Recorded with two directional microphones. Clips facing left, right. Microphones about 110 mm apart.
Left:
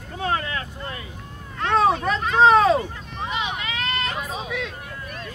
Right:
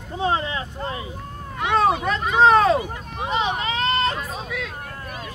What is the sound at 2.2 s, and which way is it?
Speech, centre (ahead or behind).